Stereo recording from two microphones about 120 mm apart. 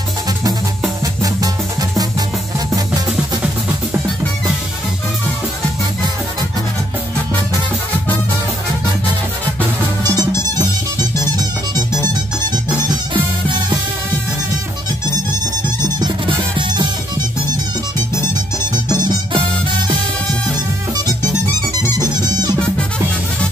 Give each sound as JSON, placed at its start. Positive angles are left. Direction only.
{"t": 1.0, "sound": "music", "side_deg": -30}
{"t": 10.0, "sound": "music", "side_deg": -35}
{"t": 12.8, "sound": "music", "side_deg": -40}
{"t": 15.8, "sound": "music", "side_deg": -40}
{"t": 18.7, "sound": "music", "side_deg": -35}
{"t": 21.9, "sound": "music", "side_deg": -35}